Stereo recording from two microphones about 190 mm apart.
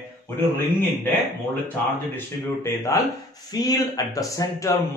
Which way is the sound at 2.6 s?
15° left (ahead or behind).